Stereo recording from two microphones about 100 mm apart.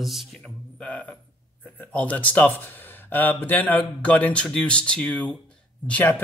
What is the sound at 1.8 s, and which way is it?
Speech, 15° left (ahead or behind).